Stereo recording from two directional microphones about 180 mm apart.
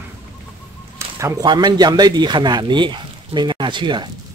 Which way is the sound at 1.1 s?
20° right (ahead or behind).